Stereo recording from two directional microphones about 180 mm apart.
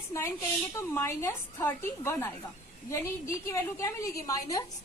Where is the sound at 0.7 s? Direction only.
15° left (ahead or behind).